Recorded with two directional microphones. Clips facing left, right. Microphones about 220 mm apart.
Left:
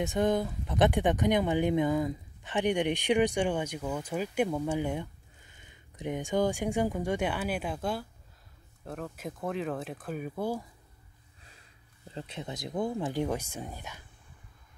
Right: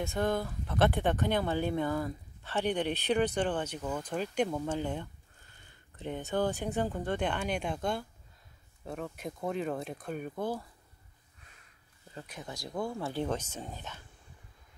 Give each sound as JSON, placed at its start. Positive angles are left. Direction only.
{"t": 0.0, "sound": "speech", "side_deg": 15}
{"t": 12.1, "sound": "speech", "side_deg": 25}